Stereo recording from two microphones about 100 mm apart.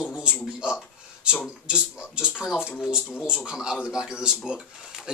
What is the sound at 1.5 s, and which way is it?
Speech, 10° right (ahead or behind).